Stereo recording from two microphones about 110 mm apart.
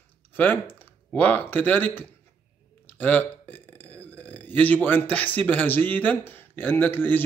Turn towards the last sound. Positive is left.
turn(degrees=15)  # may be behind; listen again after turning